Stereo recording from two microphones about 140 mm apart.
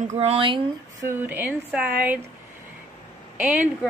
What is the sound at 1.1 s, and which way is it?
A woman's voice, 15° right (ahead or behind).